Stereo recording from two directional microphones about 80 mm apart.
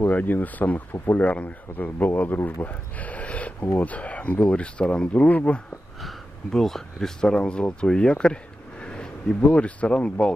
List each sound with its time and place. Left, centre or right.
0.1 s speech: left
6.0 s speech: centre